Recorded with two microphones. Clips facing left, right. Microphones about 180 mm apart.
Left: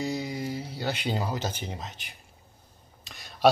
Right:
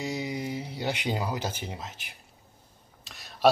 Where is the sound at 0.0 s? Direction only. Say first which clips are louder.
Left 1 dB; 20° right (ahead or behind).